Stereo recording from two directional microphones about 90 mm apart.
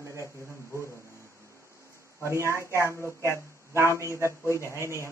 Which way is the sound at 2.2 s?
30° right (ahead or behind).